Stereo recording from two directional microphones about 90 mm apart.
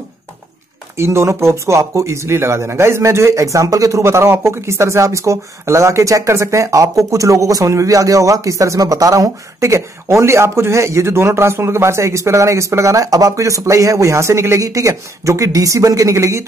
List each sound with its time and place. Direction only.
0.9 s speech: 30° right (ahead or behind)